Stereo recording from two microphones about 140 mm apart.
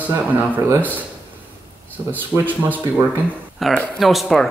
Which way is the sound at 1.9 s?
15° right (ahead or behind).